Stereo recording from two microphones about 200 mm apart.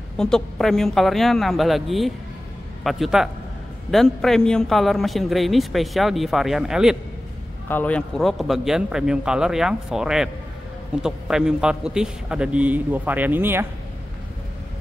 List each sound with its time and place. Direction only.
0.2 s a man's voice: centre (ahead or behind)
7.6 s a man's voice: 10° left (ahead or behind); by 13.7 s 10° right (ahead or behind)